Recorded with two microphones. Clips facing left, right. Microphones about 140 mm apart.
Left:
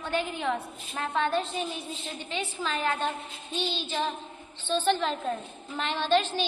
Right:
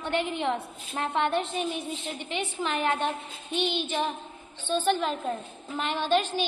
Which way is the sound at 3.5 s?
60° right (ahead or behind).